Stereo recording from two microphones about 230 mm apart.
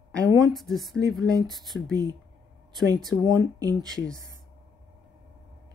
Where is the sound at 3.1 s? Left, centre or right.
Centre.